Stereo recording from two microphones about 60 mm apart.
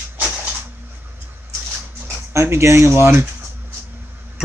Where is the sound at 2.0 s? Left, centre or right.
Right.